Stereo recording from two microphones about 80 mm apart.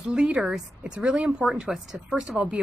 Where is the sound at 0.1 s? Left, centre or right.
Centre.